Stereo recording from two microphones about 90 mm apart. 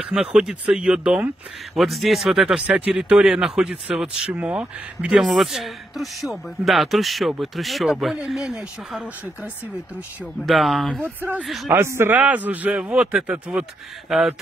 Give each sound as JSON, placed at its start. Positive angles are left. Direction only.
{"t": 0.1, "sound": "speech", "side_deg": -10}
{"t": 1.8, "sound": "speech", "side_deg": 0}
{"t": 5.1, "sound": "speech", "side_deg": 0}
{"t": 10.4, "sound": "speech", "side_deg": 0}
{"t": 11.0, "sound": "speech", "side_deg": -20}
{"t": 11.4, "sound": "speech", "side_deg": 0}
{"t": 11.7, "sound": "speech", "side_deg": -30}
{"t": 12.2, "sound": "speech", "side_deg": -15}